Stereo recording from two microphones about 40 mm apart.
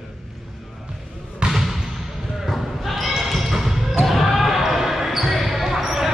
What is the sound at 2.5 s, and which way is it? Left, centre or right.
Basketball bounce, centre.